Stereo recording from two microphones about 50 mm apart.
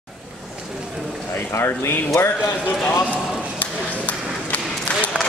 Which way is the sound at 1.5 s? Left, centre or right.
Left.